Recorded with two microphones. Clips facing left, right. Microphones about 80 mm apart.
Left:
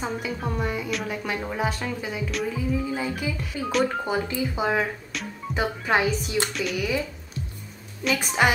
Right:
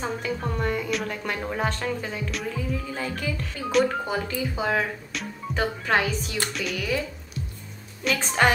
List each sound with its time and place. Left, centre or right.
0.0 s speech: centre
4.0 s speech: centre
5.1 s speech: centre
5.6 s speech: centre
6.5 s speech: centre
8.2 s speech: centre